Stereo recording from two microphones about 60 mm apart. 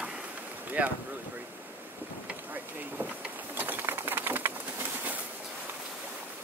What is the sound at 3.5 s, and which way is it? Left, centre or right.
Bird, right.